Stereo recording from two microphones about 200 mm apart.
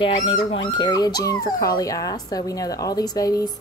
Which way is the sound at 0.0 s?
25° left (ahead or behind).